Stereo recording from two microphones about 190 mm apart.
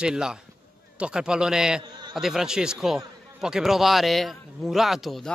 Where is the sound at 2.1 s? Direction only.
Centre (ahead or behind).